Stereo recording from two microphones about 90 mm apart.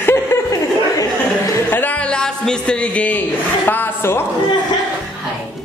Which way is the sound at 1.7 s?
20° left (ahead or behind).